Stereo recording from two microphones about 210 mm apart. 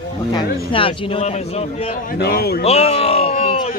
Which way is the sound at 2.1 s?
45° left (ahead or behind).